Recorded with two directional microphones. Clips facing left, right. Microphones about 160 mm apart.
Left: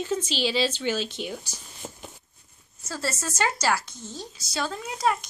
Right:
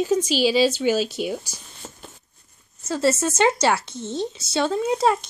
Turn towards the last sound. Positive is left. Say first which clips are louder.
# right 7 dB
turn(degrees=-25)  # may be behind; listen again after turning